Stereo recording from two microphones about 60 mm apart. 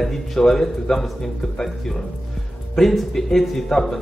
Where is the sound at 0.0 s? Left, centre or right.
Centre.